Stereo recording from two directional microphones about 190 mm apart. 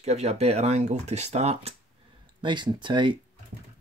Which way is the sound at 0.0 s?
35° right (ahead or behind).